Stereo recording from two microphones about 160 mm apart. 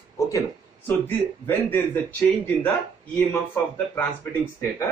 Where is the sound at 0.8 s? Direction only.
10° left (ahead or behind).